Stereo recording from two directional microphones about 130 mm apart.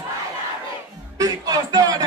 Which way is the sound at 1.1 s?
30° right (ahead or behind).